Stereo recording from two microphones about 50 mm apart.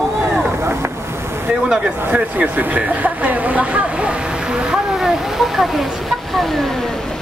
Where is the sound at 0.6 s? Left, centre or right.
Right.